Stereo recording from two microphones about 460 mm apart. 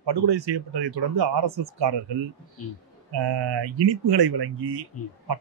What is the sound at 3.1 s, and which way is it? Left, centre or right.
Speech, right.